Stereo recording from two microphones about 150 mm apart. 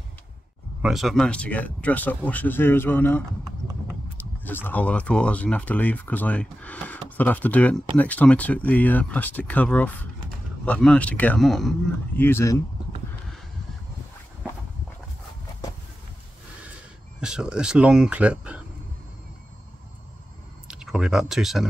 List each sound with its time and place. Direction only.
0.8 s speech: centre (ahead or behind)
4.5 s speech: 15° left (ahead or behind)
12.2 s speech: 15° left (ahead or behind)
17.2 s speech: 5° right (ahead or behind)
20.6 s speech: 5° right (ahead or behind)